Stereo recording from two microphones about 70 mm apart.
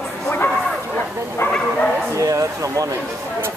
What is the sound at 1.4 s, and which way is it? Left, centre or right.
Bow-wow, left.